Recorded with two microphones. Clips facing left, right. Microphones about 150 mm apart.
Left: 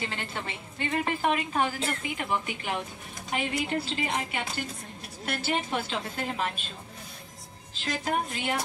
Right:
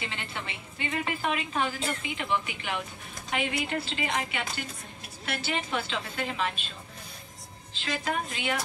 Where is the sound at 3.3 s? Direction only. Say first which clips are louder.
Even; 40° left (ahead or behind).